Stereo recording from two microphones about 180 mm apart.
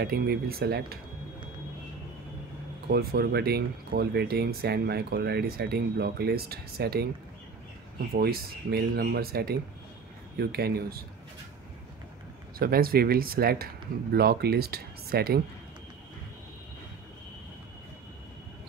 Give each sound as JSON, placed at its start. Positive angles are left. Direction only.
{"t": 0.0, "sound": "speech", "side_deg": -60}
{"t": 2.9, "sound": "speech", "side_deg": -60}
{"t": 8.1, "sound": "speech", "side_deg": -60}
{"t": 12.5, "sound": "speech", "side_deg": -55}